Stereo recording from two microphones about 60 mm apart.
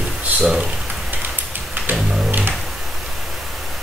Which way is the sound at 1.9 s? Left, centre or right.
Right.